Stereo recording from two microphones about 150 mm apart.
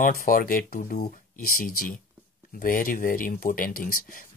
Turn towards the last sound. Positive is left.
turn(degrees=70)  # may be behind; listen again after turning